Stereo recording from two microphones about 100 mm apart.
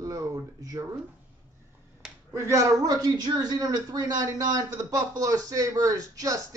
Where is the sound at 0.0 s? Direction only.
35° right (ahead or behind).